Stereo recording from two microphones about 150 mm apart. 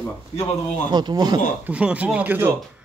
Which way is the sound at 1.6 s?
10° right (ahead or behind).